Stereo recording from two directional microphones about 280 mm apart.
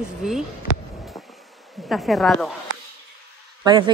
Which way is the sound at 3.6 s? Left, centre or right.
Centre.